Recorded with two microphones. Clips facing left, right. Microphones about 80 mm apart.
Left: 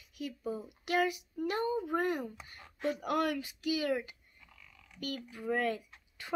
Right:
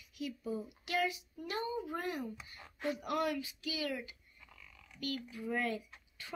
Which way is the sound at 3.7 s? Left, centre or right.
Left.